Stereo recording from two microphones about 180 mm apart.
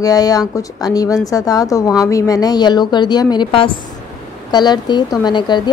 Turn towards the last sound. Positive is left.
turn(degrees=25)  # may be behind; listen again after turning